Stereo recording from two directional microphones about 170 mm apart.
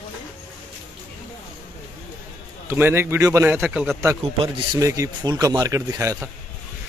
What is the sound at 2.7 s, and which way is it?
A man's voice, 15° right (ahead or behind).